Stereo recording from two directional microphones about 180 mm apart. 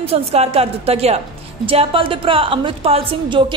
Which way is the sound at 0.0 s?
35° right (ahead or behind).